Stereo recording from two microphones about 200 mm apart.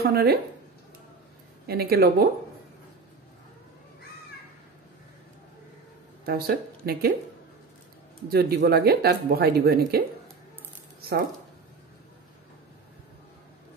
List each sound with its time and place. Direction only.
0.0 s a woman's voice: 50° right (ahead or behind)
1.7 s speech: 50° right (ahead or behind)
6.2 s speech: 50° right (ahead or behind)
8.3 s speech: 50° right (ahead or behind)